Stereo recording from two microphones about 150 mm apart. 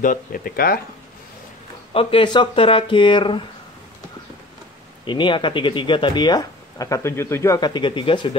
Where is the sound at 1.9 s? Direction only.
40° left (ahead or behind).